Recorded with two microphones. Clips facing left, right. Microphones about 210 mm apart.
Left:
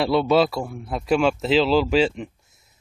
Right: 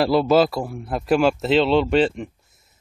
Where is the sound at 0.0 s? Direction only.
Centre (ahead or behind).